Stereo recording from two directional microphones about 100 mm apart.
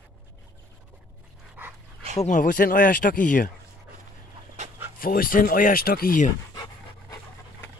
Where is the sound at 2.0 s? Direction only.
75° right (ahead or behind).